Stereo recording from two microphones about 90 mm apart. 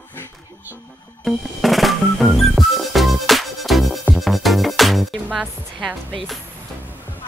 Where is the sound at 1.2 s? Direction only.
Centre (ahead or behind).